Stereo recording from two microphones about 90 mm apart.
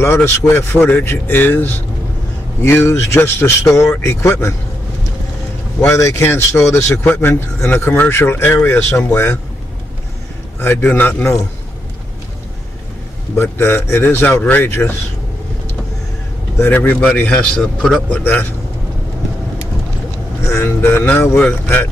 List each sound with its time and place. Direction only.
0.0 s speech: 30° left (ahead or behind)
5.9 s speech: 35° left (ahead or behind)
10.6 s speech: 25° left (ahead or behind)
13.4 s speech: 25° left (ahead or behind)
16.5 s a man's voice: 20° left (ahead or behind)
17.6 s a man's voice: 5° left (ahead or behind)
18.1 s speech: 20° left (ahead or behind)
20.4 s speech: 25° left (ahead or behind)